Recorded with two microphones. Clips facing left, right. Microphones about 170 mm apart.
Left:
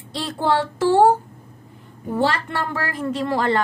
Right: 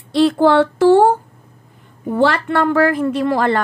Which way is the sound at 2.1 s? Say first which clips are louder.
Right 6 dB; 65° right (ahead or behind).